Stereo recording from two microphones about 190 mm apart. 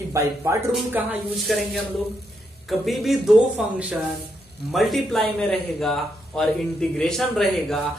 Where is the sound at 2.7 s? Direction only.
Centre (ahead or behind).